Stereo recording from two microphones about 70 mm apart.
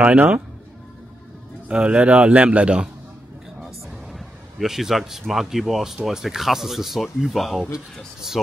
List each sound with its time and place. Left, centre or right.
0.0 s a man's voice: centre
1.7 s a man's voice: centre
4.1 s a man's voice: centre